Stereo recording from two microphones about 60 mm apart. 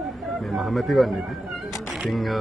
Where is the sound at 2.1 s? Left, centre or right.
Centre.